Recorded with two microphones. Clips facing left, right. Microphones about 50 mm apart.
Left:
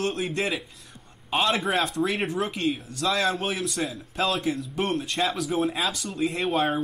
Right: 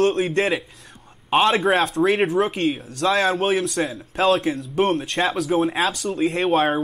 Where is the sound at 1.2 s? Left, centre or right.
Right.